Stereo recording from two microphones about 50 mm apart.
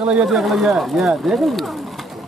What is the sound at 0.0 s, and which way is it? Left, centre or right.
Speech, centre.